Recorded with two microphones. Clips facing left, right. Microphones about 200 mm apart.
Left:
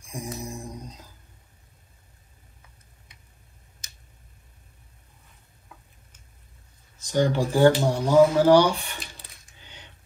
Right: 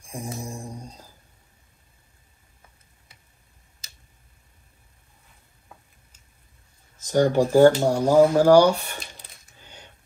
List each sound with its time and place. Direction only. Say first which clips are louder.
0.1 s mantra: right 1 dB; 30° right (ahead or behind)
7.1 s speech: right 4 dB; 50° right (ahead or behind)
9.6 s typewriter: right 2 dB; 45° right (ahead or behind)